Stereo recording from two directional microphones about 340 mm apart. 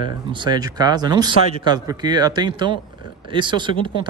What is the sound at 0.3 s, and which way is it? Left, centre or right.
Speech, centre.